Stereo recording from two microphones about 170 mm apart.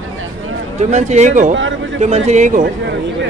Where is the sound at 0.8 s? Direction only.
40° right (ahead or behind).